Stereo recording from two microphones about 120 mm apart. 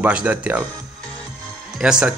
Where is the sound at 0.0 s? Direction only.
10° right (ahead or behind).